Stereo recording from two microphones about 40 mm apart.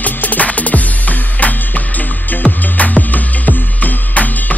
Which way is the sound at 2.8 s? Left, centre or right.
Left.